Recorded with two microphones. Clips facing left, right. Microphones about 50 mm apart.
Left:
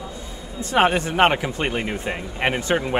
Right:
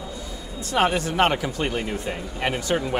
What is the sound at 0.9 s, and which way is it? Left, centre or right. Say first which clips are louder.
Speech: left 3 dB; left.